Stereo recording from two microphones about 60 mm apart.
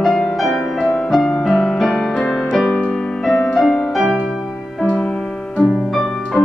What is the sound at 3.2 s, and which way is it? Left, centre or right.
Music, centre.